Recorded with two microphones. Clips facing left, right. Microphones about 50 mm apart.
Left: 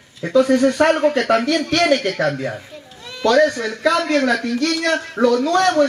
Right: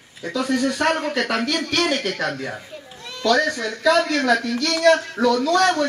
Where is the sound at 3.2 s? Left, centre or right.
Left.